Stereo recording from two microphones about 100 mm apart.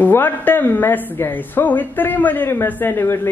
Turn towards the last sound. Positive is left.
turn(degrees=20)  # may be behind; listen again after turning